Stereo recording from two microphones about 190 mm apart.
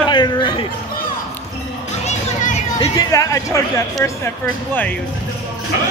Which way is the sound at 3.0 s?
20° left (ahead or behind).